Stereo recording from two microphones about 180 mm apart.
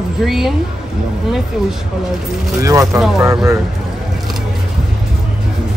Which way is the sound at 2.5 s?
20° right (ahead or behind).